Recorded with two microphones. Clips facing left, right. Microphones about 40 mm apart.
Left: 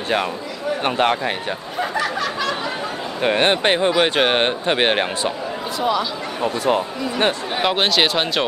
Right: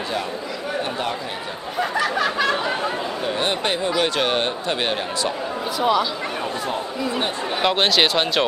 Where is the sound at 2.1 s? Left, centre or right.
Centre.